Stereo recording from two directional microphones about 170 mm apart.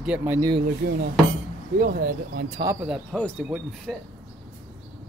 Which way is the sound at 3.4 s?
5° right (ahead or behind).